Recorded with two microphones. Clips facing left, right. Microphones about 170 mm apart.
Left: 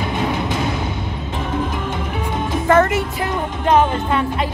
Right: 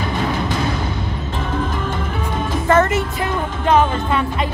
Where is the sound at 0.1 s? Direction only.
20° left (ahead or behind).